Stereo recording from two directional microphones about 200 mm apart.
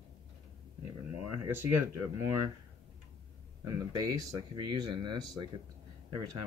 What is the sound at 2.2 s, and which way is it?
Speech, 15° right (ahead or behind).